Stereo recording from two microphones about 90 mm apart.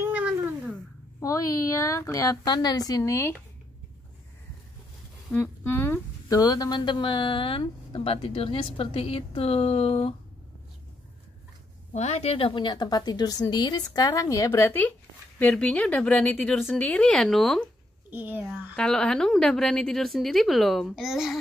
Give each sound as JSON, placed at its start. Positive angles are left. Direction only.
{"t": 0.0, "sound": "a sound", "side_deg": -20}
{"t": 1.2, "sound": "speech", "side_deg": 40}
{"t": 2.4, "sound": "a woman's voice", "side_deg": 50}
{"t": 3.0, "sound": "speech", "side_deg": 30}
{"t": 5.3, "sound": "speech", "side_deg": 25}
{"t": 6.2, "sound": "a woman's voice", "side_deg": 45}
{"t": 7.9, "sound": "a woman's voice", "side_deg": 90}
{"t": 12.4, "sound": "a woman's voice", "side_deg": 75}
{"t": 14.7, "sound": "speech", "side_deg": 20}
{"t": 18.1, "sound": "speech", "side_deg": -20}
{"t": 18.8, "sound": "a woman's voice", "side_deg": 10}